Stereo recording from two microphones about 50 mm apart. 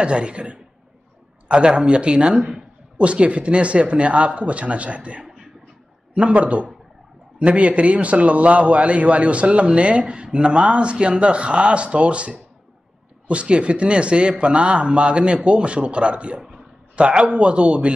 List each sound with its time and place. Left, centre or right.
0.0 s a man's voice: right